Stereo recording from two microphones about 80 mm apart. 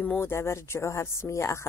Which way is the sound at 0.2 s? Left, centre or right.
Left.